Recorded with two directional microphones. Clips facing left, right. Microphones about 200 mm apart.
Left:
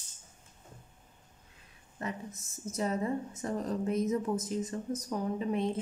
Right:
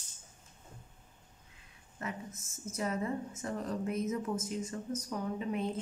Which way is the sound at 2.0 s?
35° left (ahead or behind).